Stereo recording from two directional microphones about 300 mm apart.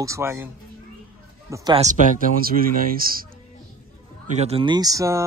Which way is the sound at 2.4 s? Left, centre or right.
Right.